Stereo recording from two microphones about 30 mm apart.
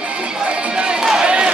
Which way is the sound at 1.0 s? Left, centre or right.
Right.